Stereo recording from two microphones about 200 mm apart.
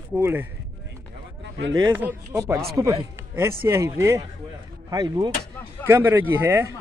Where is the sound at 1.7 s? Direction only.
15° right (ahead or behind).